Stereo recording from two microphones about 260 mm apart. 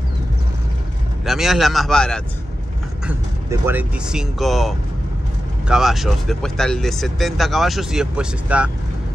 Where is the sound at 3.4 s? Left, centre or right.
Centre.